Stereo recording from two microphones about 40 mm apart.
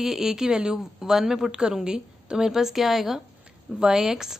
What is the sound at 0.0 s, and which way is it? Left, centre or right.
A woman's voice, centre.